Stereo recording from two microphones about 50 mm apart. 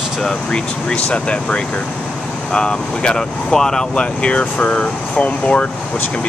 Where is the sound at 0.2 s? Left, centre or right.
Centre.